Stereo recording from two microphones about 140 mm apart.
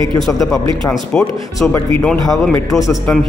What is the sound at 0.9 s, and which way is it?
Speech, 5° left (ahead or behind).